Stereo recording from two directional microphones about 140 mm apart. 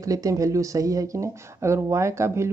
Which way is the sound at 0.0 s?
25° right (ahead or behind).